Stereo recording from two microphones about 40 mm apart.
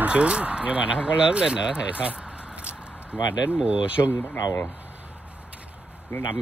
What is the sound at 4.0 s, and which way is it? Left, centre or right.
Speech, left.